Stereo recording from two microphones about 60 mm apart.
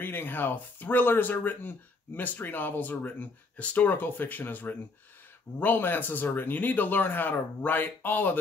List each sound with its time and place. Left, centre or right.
0.0 s speech: left